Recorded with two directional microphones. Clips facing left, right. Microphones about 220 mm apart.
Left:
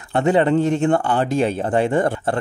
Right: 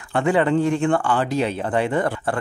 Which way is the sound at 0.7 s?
40° left (ahead or behind).